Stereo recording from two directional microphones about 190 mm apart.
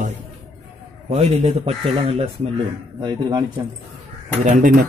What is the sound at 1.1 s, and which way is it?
Speech, 35° right (ahead or behind).